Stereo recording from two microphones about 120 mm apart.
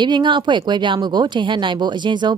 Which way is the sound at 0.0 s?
40° right (ahead or behind).